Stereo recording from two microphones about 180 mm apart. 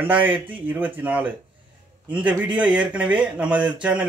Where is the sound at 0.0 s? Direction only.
10° right (ahead or behind).